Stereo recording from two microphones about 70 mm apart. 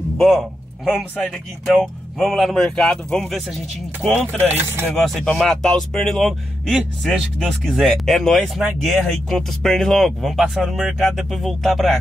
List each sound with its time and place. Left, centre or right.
0.2 s speech: centre
4.9 s speech: centre